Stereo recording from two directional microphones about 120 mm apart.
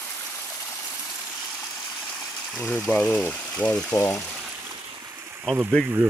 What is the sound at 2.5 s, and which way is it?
Speech, 5° left (ahead or behind).